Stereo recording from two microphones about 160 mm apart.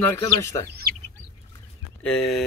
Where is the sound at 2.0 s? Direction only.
5° left (ahead or behind).